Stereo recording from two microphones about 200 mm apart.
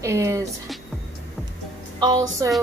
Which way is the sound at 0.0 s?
15° right (ahead or behind).